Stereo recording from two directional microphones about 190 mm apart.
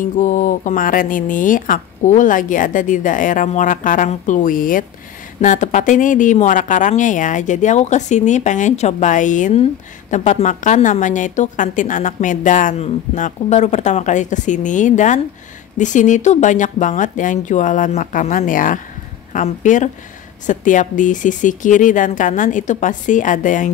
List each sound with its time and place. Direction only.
0.0 s a woman's voice: 40° left (ahead or behind)